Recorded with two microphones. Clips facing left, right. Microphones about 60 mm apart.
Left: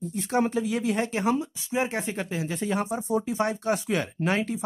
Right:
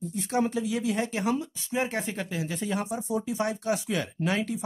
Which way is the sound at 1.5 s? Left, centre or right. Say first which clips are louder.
Left 2 dB; centre.